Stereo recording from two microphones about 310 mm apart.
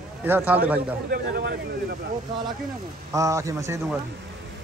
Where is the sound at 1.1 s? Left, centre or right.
Right.